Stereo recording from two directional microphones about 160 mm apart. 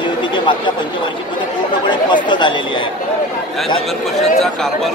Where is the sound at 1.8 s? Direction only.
30° left (ahead or behind).